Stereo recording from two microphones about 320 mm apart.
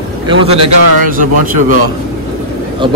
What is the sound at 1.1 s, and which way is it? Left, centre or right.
Speech, right.